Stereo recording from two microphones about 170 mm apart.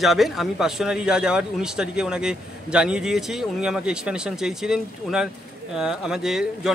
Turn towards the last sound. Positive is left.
turn(degrees=-5)  # may be behind; listen again after turning